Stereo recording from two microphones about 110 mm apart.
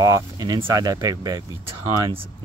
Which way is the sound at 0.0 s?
35° right (ahead or behind).